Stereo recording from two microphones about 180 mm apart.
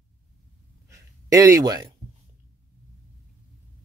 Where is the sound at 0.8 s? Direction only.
15° right (ahead or behind).